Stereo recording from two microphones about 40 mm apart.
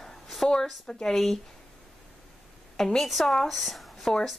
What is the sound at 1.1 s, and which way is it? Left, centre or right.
Speech, centre.